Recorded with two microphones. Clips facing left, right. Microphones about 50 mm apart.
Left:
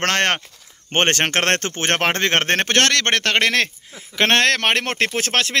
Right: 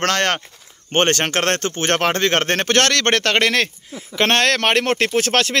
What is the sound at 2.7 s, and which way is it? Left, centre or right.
Speech, centre.